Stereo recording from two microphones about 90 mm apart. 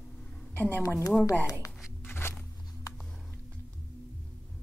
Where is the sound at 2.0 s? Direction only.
25° left (ahead or behind).